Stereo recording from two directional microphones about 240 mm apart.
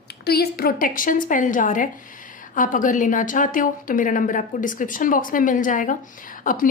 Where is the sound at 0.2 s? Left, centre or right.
Left.